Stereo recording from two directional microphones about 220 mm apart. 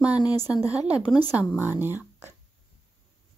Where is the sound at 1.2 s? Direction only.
5° right (ahead or behind).